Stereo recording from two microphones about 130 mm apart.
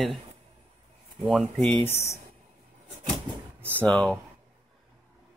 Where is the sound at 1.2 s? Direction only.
Centre (ahead or behind).